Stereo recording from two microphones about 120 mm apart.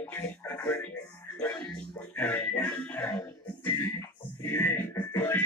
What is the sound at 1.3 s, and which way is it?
Music, 10° left (ahead or behind).